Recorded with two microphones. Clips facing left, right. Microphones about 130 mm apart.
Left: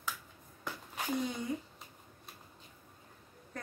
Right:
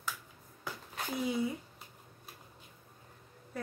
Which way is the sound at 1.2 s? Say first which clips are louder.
Right 5 dB; 5° right (ahead or behind).